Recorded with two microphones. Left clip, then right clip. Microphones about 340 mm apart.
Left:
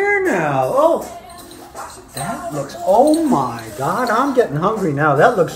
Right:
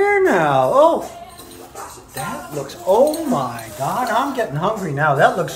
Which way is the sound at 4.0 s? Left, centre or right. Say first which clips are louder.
Left 4 dB; right.